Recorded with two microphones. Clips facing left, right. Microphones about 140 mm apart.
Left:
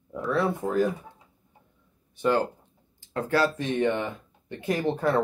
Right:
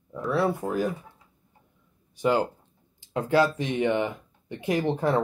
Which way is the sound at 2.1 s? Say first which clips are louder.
Even; 15° right (ahead or behind).